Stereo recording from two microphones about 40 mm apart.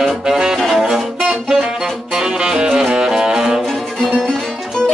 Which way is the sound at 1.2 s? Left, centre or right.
Centre.